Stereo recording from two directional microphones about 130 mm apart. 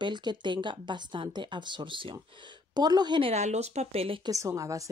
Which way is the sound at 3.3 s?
60° right (ahead or behind).